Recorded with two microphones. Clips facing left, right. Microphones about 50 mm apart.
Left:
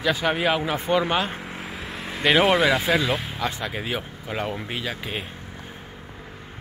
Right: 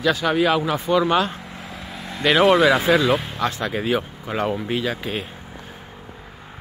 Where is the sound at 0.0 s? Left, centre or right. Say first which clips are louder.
Right 3 dB; centre.